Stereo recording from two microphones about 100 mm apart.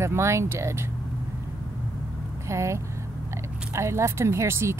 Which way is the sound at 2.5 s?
30° right (ahead or behind).